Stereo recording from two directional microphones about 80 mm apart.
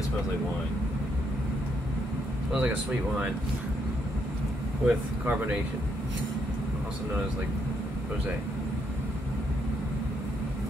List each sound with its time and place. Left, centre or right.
2.5 s speech: centre
4.8 s speech: centre